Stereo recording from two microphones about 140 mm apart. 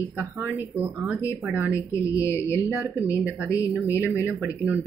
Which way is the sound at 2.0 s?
20° left (ahead or behind).